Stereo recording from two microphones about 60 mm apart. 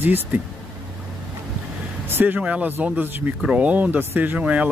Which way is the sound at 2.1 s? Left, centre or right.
Right.